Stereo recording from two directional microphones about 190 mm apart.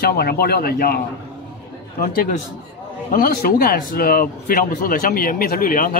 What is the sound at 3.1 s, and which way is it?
A man's voice, 50° left (ahead or behind).